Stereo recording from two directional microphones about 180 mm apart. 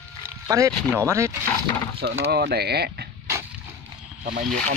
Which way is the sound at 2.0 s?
70° right (ahead or behind).